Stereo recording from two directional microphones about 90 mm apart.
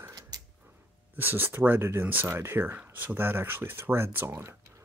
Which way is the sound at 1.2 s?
25° right (ahead or behind).